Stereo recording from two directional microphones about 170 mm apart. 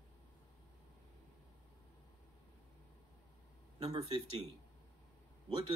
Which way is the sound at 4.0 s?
30° right (ahead or behind).